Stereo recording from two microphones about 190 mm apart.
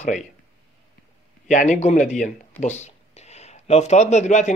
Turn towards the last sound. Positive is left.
turn(degrees=40)  # may be behind; listen again after turning